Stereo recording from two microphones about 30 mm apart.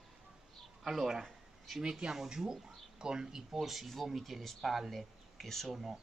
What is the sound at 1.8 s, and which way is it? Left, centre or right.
Speech, right.